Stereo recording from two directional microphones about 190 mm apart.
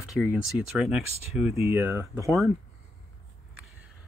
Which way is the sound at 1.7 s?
10° right (ahead or behind).